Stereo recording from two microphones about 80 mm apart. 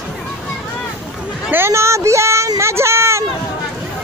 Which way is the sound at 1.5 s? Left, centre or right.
Right.